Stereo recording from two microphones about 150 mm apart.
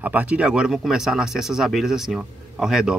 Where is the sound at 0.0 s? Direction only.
10° right (ahead or behind).